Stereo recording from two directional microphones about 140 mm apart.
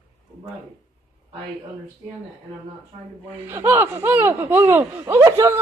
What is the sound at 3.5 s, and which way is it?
Speech, 15° right (ahead or behind).